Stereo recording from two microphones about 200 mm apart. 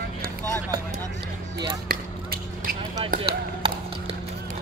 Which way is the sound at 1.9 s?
50° right (ahead or behind).